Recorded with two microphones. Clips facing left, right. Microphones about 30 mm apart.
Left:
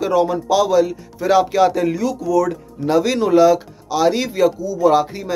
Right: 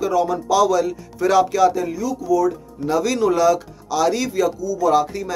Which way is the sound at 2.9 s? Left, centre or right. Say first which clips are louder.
Left 3 dB; left.